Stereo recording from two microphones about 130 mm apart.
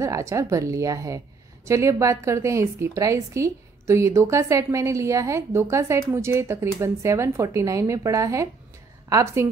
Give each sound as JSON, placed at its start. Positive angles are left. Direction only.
{"t": 0.0, "sound": "a woman's voice", "side_deg": -25}